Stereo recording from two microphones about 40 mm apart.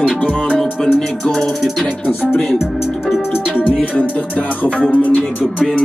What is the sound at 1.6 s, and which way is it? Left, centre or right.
Music, centre.